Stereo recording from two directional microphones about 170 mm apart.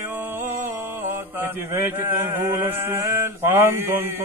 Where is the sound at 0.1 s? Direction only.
10° right (ahead or behind).